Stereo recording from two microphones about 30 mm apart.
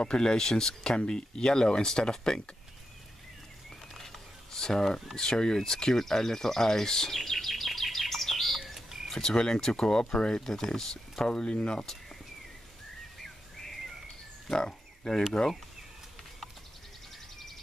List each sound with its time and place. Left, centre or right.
0.0 s speech: left
3.9 s a sound: centre
4.5 s speech: centre
8.7 s a sound: centre
9.1 s speech: centre
10.4 s speech: centre
11.4 s speech: left
13.2 s bird: centre
14.5 s speech: left